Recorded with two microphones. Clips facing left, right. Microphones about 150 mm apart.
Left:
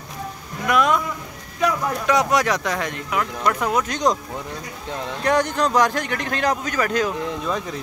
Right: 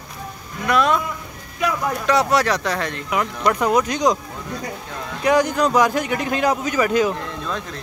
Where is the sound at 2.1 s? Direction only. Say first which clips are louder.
Right 1 dB; 15° left (ahead or behind).